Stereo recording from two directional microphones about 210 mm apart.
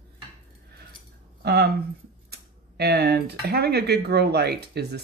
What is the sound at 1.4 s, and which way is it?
Speech, 50° right (ahead or behind).